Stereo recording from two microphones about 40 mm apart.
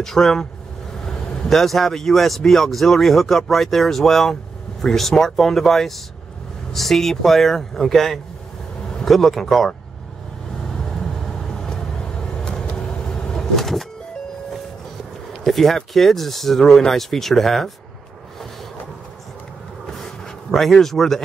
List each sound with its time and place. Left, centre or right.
0.0 s speech: centre
10.8 s vehicle: centre
13.6 s vehicle: centre
15.4 s speech: centre
20.5 s speech: centre